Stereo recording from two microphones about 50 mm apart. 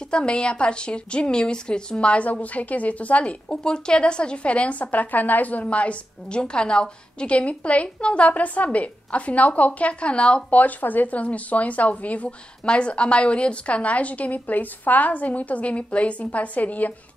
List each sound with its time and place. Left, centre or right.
0.1 s speech: left
3.4 s speech: centre
10.5 s speech: left